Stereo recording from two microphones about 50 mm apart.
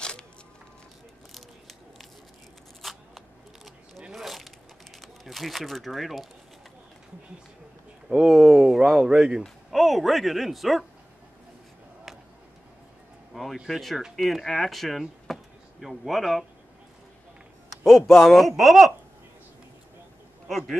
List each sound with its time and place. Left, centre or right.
2.8 s a sound: centre
5.0 s speech: centre
8.2 s speech: centre
9.7 s speech: centre
13.3 s a sound: centre
13.7 s speech: centre
18.1 s speech: centre
20.4 s speech: centre